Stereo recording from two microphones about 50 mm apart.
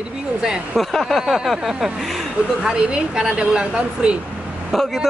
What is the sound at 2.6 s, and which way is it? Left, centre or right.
A woman's voice, centre.